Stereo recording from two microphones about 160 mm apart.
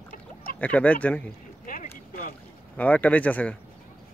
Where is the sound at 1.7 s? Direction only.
65° left (ahead or behind).